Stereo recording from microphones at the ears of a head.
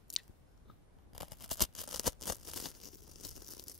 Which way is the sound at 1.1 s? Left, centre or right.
Left.